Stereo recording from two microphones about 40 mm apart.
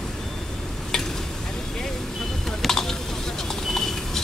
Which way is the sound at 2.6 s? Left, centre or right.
Centre.